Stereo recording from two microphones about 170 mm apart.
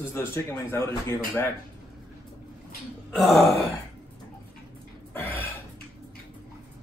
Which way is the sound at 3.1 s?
Centre (ahead or behind).